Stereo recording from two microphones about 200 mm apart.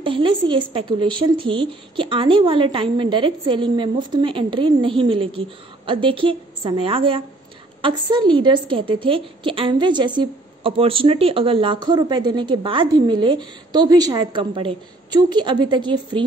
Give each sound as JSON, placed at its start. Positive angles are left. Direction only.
{"t": 0.0, "sound": "a woman's voice", "side_deg": -25}